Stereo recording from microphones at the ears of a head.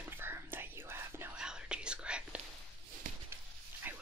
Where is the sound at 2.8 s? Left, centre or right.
Right.